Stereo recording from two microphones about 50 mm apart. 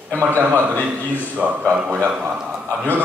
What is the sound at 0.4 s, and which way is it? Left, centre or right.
Speech, right.